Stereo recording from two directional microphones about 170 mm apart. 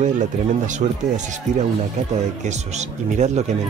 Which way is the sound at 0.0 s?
45° right (ahead or behind).